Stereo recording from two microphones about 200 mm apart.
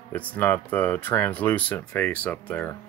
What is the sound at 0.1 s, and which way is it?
Speech, 10° left (ahead or behind).